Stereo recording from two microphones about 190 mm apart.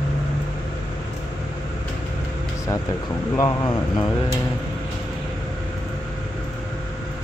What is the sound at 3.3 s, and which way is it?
Mantra, 20° left (ahead or behind).